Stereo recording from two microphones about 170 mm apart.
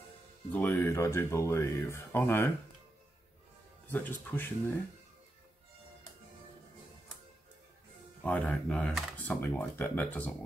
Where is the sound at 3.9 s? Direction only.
10° left (ahead or behind).